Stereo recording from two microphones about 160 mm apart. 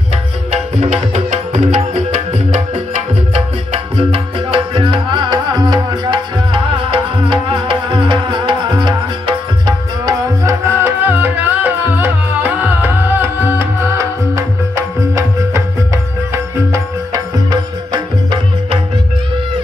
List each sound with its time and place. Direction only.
0.5 s music: 40° right (ahead or behind); by 14.4 s 15° right (ahead or behind)
16.7 s music: 25° right (ahead or behind)